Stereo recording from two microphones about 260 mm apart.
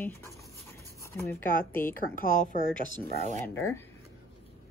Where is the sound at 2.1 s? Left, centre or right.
Left.